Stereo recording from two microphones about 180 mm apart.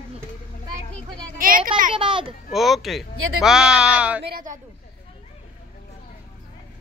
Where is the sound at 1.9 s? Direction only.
30° right (ahead or behind).